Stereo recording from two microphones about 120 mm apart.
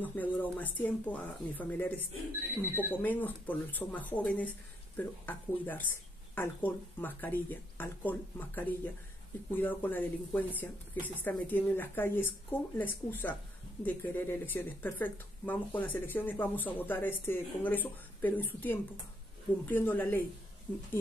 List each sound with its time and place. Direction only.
0.0 s speech: 15° left (ahead or behind)